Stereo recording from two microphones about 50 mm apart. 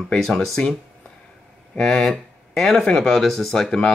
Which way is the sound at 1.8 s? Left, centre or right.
Centre.